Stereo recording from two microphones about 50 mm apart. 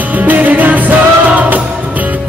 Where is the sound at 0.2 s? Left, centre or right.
Right.